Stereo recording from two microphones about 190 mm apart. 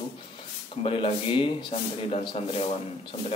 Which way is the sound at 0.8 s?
30° left (ahead or behind).